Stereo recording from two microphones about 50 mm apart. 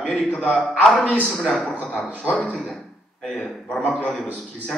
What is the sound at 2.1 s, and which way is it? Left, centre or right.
Speech, right.